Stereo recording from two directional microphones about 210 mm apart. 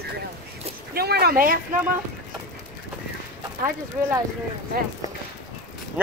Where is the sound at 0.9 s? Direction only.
50° right (ahead or behind).